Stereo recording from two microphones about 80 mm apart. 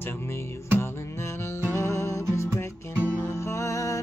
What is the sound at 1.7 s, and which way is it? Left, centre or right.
Music, left.